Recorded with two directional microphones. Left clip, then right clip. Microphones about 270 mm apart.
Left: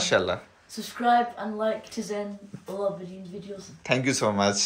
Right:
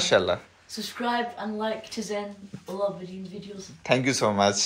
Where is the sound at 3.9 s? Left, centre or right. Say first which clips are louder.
Right 1 dB; centre.